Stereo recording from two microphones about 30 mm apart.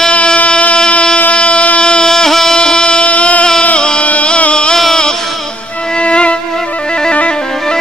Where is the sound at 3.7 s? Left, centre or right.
Left.